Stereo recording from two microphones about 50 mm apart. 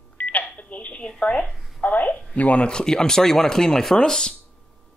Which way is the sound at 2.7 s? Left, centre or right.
Centre.